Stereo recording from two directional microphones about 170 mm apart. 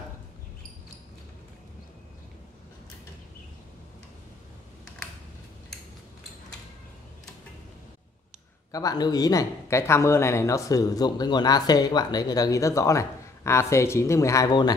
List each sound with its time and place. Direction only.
8.7 s speech: 20° left (ahead or behind)